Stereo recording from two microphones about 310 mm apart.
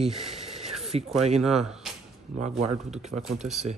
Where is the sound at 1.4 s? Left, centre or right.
Centre.